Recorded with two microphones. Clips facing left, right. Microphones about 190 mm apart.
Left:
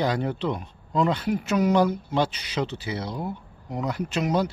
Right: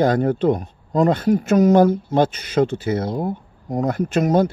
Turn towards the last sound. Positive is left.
turn(degrees=-50)  # may be behind; listen again after turning